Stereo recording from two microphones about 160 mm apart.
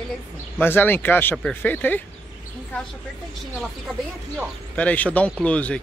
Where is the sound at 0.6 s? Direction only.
15° left (ahead or behind).